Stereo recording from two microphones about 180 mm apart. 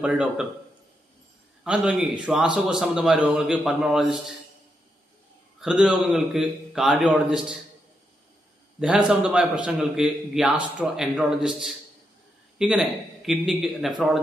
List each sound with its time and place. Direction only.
0.0 s a man's voice: 5° right (ahead or behind)
1.6 s a man's voice: 5° right (ahead or behind)
5.6 s a man's voice: 5° right (ahead or behind)
8.7 s a man's voice: 5° right (ahead or behind)